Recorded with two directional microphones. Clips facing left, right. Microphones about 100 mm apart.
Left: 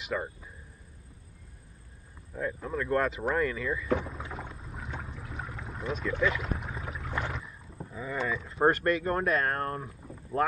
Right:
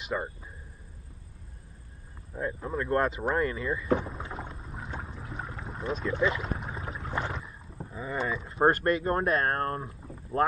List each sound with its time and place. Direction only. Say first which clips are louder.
0.1 s speech: right 1 dB; 20° right (ahead or behind)
2.3 s speech: right 1 dB; 20° right (ahead or behind)
4.7 s boat: right 1 dB; 20° right (ahead or behind)
6.0 s rowboat: right 1 dB; 20° right (ahead or behind)
8.7 s speech: right 1 dB; 40° right (ahead or behind)